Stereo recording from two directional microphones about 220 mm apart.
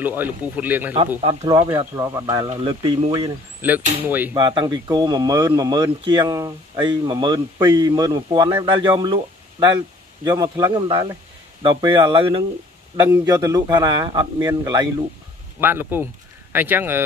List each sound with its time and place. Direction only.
0.0 s speech: 10° right (ahead or behind)
1.2 s speech: 20° right (ahead or behind)
4.4 s speech: 20° right (ahead or behind)